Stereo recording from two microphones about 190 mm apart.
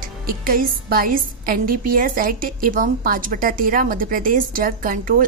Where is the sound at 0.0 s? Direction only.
50° right (ahead or behind).